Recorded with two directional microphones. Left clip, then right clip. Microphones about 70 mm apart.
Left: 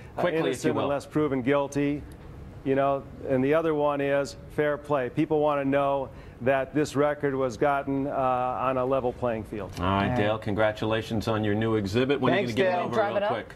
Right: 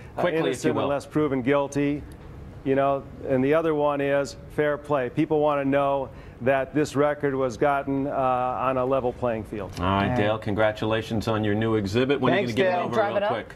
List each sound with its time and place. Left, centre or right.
0.1 s speech: left